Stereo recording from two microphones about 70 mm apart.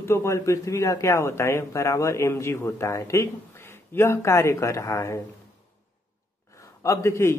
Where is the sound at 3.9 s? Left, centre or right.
Left.